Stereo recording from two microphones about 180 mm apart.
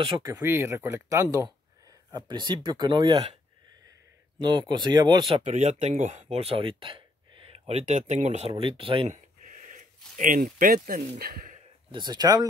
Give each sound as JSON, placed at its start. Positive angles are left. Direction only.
{"t": 0.0, "sound": "speech", "side_deg": -25}
{"t": 0.3, "sound": "speech", "side_deg": -15}
{"t": 4.4, "sound": "speech", "side_deg": -25}
{"t": 5.4, "sound": "speech", "side_deg": -40}
{"t": 9.1, "sound": "a sound", "side_deg": -45}
{"t": 11.9, "sound": "speech", "side_deg": -25}